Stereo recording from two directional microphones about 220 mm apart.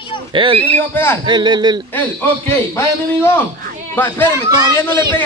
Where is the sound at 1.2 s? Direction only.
20° right (ahead or behind).